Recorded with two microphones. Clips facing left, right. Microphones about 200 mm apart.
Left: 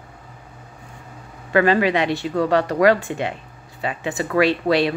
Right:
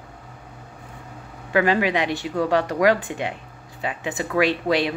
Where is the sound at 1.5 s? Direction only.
15° right (ahead or behind).